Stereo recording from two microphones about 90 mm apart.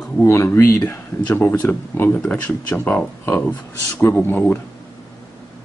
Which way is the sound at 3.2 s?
20° left (ahead or behind).